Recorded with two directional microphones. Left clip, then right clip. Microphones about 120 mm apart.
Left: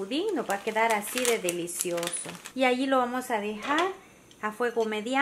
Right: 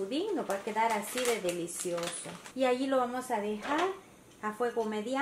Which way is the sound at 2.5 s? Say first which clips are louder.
Left 4 dB; 40° left (ahead or behind).